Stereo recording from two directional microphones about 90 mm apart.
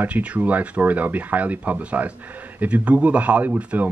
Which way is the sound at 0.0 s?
15° right (ahead or behind).